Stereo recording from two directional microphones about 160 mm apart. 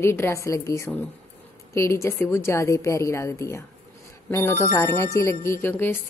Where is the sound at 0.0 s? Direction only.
15° left (ahead or behind).